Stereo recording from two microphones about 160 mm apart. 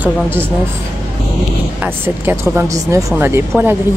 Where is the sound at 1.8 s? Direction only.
15° right (ahead or behind).